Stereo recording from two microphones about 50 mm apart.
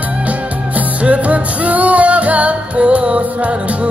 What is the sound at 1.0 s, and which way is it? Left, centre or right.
Music, right.